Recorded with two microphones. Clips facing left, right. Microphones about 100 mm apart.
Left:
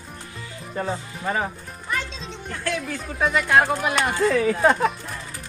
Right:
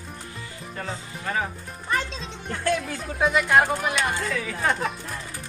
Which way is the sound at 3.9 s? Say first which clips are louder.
Left 6 dB; 35° left (ahead or behind).